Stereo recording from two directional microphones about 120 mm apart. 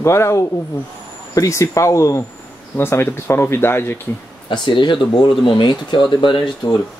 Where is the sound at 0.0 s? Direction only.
25° left (ahead or behind).